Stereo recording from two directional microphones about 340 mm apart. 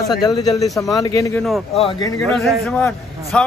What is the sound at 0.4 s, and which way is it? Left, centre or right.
Speech, centre.